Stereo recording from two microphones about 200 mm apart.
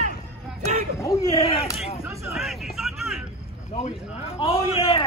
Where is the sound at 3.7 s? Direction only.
30° left (ahead or behind).